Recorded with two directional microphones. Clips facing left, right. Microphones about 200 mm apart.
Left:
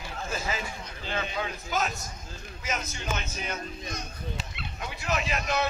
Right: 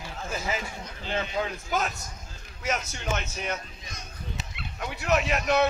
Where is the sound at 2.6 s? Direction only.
70° right (ahead or behind).